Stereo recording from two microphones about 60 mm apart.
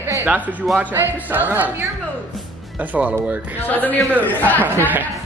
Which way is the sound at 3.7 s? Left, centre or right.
Left.